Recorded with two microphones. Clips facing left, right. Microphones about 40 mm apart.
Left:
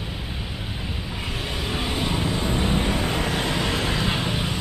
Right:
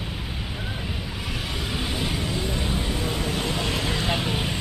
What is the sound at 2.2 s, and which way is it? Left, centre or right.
Vehicle, left.